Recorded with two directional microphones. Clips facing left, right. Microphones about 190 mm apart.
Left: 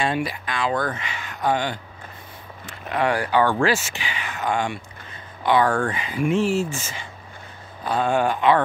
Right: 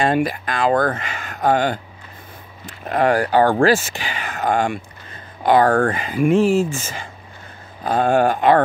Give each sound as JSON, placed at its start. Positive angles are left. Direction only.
{"t": 0.0, "sound": "speech", "side_deg": -50}
{"t": 2.9, "sound": "speech", "side_deg": -45}